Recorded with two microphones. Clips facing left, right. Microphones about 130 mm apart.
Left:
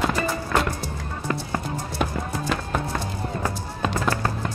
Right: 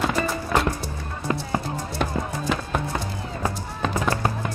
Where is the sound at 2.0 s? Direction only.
Centre (ahead or behind).